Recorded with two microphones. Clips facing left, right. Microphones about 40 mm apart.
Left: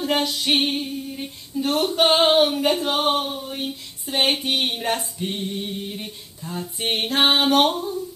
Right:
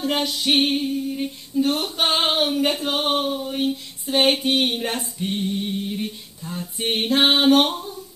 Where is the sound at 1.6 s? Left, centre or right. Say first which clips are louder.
Right 1 dB; left.